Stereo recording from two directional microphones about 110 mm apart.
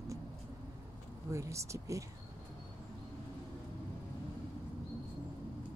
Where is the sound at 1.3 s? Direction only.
25° right (ahead or behind).